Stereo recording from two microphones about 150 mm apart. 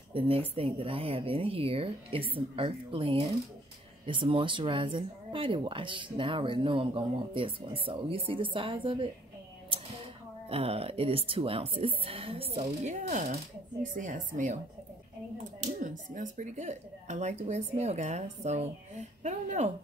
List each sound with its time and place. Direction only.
0.1 s speech: 40° right (ahead or behind)
10.5 s speech: 40° right (ahead or behind); by 14.6 s 55° right (ahead or behind)
15.6 s speech: 55° right (ahead or behind)